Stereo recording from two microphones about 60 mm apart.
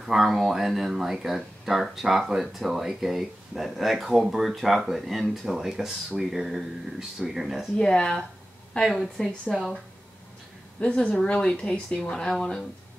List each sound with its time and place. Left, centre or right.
0.0 s speech: centre
7.7 s speech: centre
10.8 s speech: left